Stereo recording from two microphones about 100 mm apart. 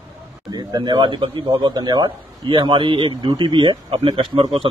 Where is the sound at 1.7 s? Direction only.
45° right (ahead or behind).